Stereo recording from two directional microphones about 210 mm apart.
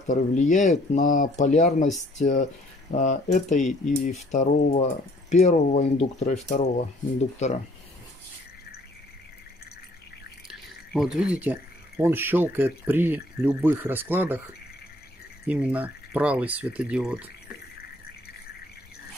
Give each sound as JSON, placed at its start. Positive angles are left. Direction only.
{"t": 0.0, "sound": "speech", "side_deg": 35}
{"t": 10.5, "sound": "speech", "side_deg": 0}
{"t": 15.4, "sound": "speech", "side_deg": -5}